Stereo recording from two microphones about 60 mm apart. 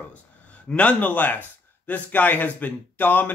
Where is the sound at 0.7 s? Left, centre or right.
Left.